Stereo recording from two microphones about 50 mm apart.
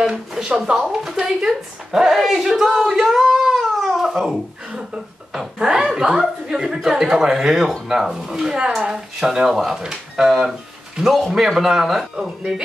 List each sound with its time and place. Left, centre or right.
0.7 s speech: centre